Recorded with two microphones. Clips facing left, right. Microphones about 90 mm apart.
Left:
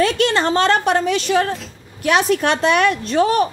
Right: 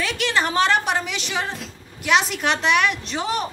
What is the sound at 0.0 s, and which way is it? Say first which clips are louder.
A woman's voice: left 6 dB; 35° left (ahead or behind).